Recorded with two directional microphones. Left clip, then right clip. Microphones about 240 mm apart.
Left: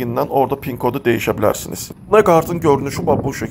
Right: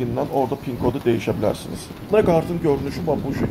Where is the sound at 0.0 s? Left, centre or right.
Centre.